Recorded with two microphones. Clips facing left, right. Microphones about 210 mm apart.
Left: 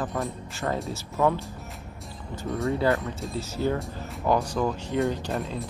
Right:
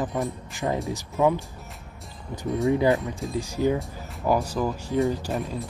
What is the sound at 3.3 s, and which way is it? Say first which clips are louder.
Speech: right 3 dB; 15° right (ahead or behind).